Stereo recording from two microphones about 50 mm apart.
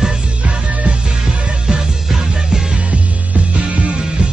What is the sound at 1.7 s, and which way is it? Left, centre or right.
Music, centre.